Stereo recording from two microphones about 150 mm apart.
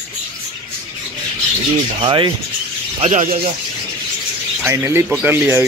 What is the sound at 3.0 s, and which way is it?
Speech, 50° right (ahead or behind).